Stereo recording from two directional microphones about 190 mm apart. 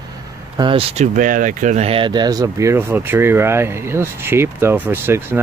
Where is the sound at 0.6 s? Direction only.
30° right (ahead or behind).